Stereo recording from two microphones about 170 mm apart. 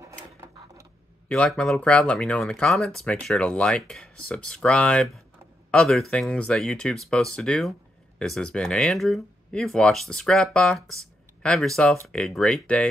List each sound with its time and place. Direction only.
0.0 s printer: 20° right (ahead or behind)
1.3 s speech: 5° left (ahead or behind)